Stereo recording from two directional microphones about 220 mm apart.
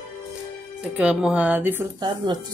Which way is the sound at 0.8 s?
5° right (ahead or behind).